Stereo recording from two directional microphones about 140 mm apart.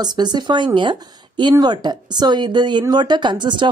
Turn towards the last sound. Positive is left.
turn(degrees=-35)  # may be behind; listen again after turning